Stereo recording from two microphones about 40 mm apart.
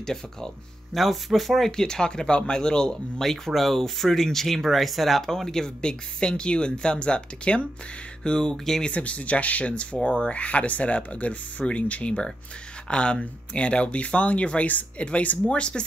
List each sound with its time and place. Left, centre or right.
0.0 s speech: centre
0.9 s speech: centre
1.7 s speech: centre
3.2 s speech: centre
5.3 s speech: centre
8.8 s speech: left